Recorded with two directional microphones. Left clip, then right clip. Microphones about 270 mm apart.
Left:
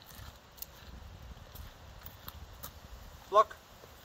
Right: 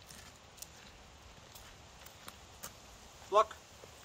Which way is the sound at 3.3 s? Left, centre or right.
Centre.